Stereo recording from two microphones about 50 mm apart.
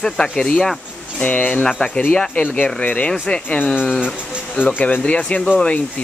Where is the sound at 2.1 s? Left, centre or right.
Centre.